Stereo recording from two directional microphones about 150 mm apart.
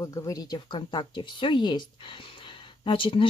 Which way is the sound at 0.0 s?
20° left (ahead or behind).